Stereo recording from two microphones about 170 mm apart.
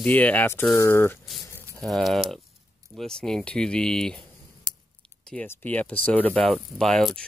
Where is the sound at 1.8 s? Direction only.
Centre (ahead or behind).